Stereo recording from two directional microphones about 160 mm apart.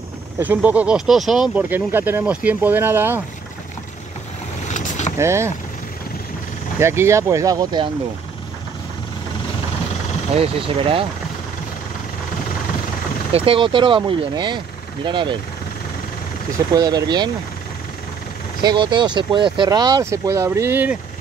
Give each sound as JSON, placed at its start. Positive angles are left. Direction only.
{"t": 0.4, "sound": "speech", "side_deg": -10}
{"t": 4.6, "sound": "boat", "side_deg": 50}
{"t": 5.1, "sound": "speech", "side_deg": -15}
{"t": 6.8, "sound": "speech", "side_deg": -15}
{"t": 10.3, "sound": "speech", "side_deg": -35}
{"t": 13.3, "sound": "speech", "side_deg": -35}
{"t": 16.7, "sound": "speech", "side_deg": -25}
{"t": 18.6, "sound": "speech", "side_deg": -30}